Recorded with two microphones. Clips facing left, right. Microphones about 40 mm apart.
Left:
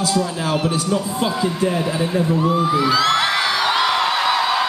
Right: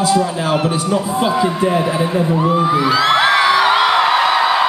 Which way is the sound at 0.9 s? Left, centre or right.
Centre.